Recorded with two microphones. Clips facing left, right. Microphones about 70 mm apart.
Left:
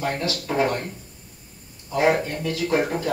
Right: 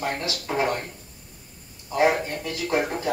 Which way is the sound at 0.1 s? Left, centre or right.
Centre.